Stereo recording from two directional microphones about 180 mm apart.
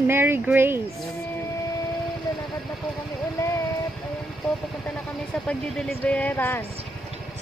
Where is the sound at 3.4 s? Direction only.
15° left (ahead or behind).